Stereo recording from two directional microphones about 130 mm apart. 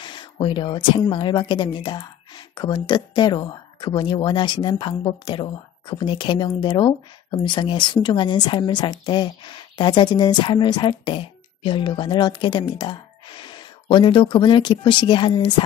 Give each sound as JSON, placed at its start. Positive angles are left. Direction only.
{"t": 0.0, "sound": "a woman's voice", "side_deg": 35}